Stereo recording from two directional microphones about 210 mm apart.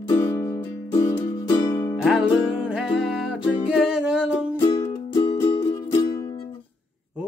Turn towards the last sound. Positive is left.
turn(degrees=15)  # may be behind; listen again after turning